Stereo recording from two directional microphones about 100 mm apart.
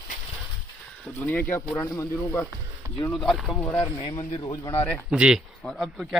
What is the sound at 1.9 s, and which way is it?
Speech, 30° left (ahead or behind).